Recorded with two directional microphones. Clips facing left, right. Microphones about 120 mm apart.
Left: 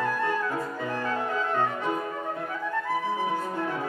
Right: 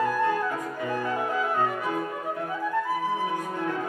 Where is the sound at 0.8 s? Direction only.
15° right (ahead or behind).